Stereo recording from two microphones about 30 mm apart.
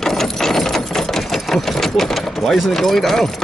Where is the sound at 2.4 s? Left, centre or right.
Centre.